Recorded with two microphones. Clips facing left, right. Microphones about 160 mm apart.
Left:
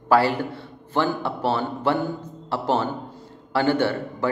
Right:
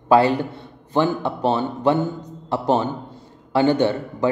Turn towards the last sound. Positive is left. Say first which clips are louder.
# right 3 dB
turn(degrees=-15)  # may be behind; listen again after turning